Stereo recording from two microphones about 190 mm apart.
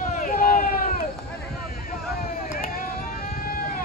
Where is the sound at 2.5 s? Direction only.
45° left (ahead or behind).